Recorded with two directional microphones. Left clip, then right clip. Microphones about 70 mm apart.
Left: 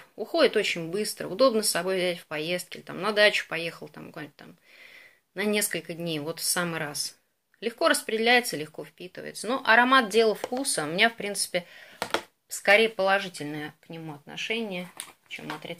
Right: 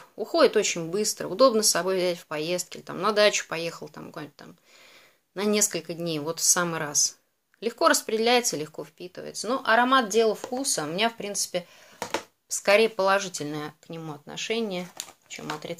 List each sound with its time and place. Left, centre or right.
0.2 s speech: right
9.1 s speech: centre
9.8 s speech: centre
12.0 s a sound: left
12.6 s speech: right
13.3 s speech: right